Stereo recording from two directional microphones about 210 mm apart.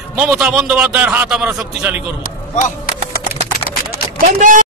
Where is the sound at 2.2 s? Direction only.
40° left (ahead or behind).